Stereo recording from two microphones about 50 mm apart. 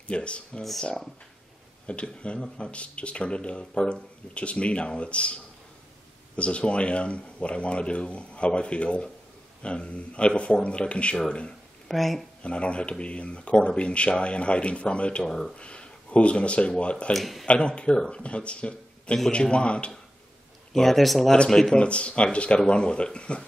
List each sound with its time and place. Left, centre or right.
0.0 s speech: left
0.6 s speech: centre
1.9 s speech: left
11.9 s speech: centre
12.4 s speech: left
15.2 s speech: centre
15.5 s speech: left
17.1 s speech: centre
17.5 s speech: left
20.7 s speech: centre
21.3 s speech: centre